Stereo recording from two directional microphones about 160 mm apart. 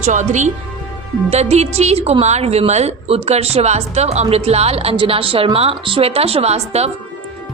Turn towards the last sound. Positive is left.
turn(degrees=-40)  # may be behind; listen again after turning